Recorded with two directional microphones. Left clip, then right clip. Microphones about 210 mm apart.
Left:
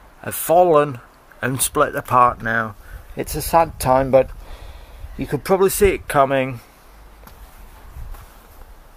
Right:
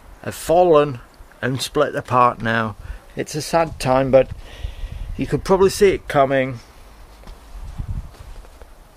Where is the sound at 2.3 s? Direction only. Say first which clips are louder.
Even; 25° right (ahead or behind).